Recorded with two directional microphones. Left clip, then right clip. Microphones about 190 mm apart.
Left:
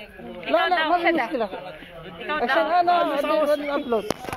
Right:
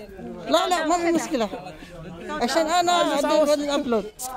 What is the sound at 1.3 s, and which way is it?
Speech, 40° right (ahead or behind).